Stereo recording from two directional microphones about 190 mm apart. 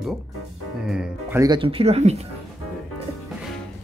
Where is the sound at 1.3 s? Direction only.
20° right (ahead or behind).